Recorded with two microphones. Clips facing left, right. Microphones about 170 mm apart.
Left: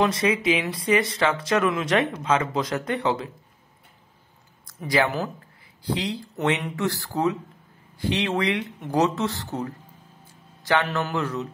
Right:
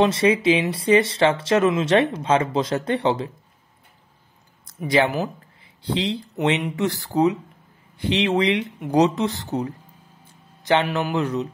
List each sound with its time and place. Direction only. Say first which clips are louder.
0.0 s speech: right 4 dB; 30° right (ahead or behind)
4.6 s speech: right 3 dB; 20° right (ahead or behind)
6.3 s speech: right 2 dB; 15° right (ahead or behind)